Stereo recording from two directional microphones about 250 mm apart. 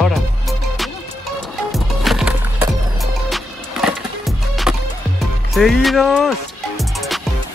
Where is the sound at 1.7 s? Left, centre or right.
Centre.